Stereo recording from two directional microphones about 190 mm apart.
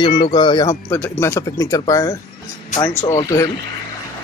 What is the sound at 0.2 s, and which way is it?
Speech, 25° left (ahead or behind).